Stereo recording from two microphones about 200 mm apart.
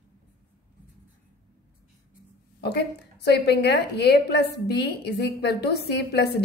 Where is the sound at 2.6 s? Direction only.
55° left (ahead or behind).